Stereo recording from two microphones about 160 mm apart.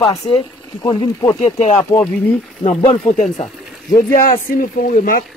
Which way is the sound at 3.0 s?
50° left (ahead or behind).